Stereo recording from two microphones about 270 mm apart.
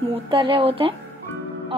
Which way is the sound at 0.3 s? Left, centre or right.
Centre.